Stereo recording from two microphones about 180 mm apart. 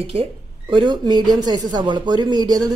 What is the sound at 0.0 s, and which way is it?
Speech, 30° right (ahead or behind).